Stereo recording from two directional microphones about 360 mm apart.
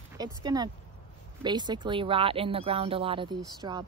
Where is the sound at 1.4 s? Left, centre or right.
Centre.